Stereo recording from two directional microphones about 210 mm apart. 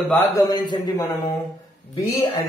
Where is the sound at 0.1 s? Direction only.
10° left (ahead or behind).